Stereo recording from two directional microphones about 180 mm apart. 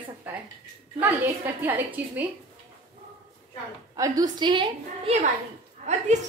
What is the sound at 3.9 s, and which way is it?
A woman's voice, 20° right (ahead or behind).